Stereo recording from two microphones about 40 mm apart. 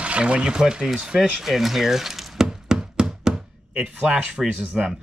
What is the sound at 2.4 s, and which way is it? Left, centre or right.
Music, centre.